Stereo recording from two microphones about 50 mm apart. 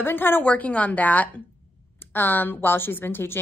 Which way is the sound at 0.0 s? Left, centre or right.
Left.